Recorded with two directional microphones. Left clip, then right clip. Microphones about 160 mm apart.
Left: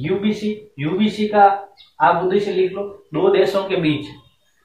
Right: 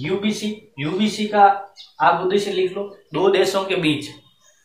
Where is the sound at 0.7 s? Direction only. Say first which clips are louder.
Even; 20° right (ahead or behind).